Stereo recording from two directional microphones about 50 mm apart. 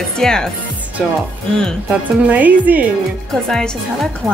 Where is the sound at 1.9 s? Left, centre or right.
Right.